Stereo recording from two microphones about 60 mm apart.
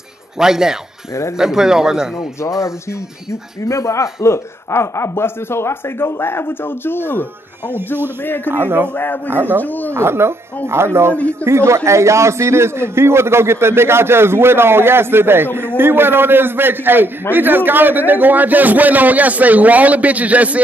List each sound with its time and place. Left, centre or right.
0.4 s a man's voice: centre
3.6 s speech: left
8.5 s speech: right
8.9 s speech: left
9.3 s speech: right
9.6 s speech: left
9.9 s a man's voice: right